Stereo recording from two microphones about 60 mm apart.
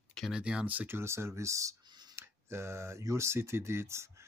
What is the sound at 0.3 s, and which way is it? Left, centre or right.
Speech, centre.